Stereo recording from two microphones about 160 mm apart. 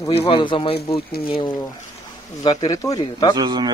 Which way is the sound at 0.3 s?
30° left (ahead or behind).